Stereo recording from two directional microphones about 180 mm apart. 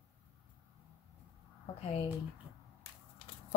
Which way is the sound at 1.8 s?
30° left (ahead or behind).